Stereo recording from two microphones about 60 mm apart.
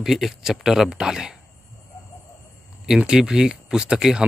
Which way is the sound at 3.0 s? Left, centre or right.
Centre.